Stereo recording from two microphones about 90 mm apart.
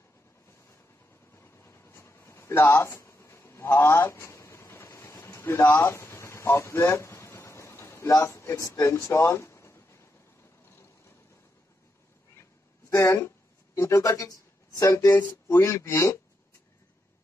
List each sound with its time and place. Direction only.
1.3 s a sound: 30° left (ahead or behind)
8.1 s speech: 30° left (ahead or behind)
12.9 s speech: 30° left (ahead or behind)
15.2 s speech: 25° left (ahead or behind)